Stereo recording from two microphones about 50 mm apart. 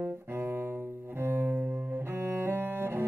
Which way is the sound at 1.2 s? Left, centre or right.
Right.